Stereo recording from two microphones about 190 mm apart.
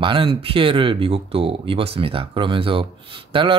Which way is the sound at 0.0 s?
25° right (ahead or behind).